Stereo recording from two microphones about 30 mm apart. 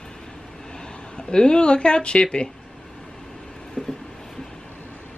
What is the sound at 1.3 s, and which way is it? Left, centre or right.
Speech, left.